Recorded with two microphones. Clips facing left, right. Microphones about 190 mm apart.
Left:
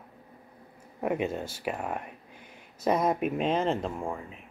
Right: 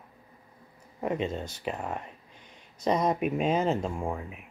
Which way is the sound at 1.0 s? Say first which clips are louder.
Left 1 dB; 10° left (ahead or behind).